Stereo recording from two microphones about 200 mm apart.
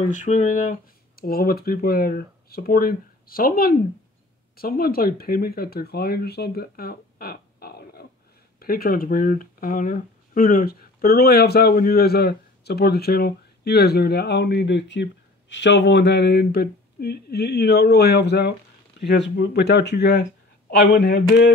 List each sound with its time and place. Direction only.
0.1 s speech: 40° left (ahead or behind); by 21.2 s 60° left (ahead or behind)